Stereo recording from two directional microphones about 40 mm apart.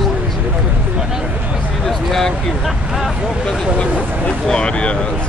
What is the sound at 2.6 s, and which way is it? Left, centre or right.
Speech, centre.